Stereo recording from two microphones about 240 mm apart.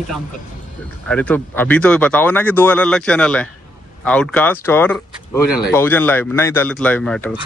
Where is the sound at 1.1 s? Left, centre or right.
Centre.